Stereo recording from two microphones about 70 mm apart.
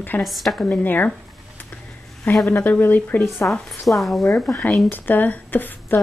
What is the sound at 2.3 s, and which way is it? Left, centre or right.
Speech, left.